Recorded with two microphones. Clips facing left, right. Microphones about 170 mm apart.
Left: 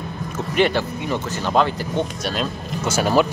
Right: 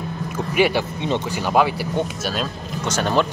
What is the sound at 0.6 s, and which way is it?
Speech, 10° right (ahead or behind).